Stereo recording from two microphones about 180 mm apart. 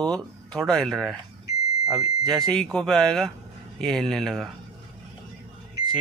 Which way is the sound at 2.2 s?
20° right (ahead or behind).